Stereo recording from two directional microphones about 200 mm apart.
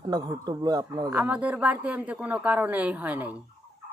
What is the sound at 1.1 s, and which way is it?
A man's voice, 5° right (ahead or behind).